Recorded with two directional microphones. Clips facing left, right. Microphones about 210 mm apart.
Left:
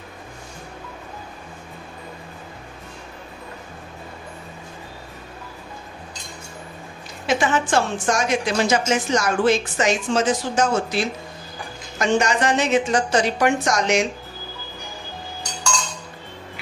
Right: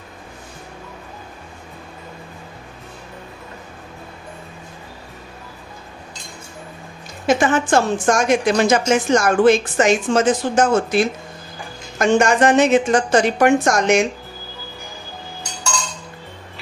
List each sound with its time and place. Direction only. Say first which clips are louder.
7.2 s a woman's voice: right 4 dB; 50° right (ahead or behind)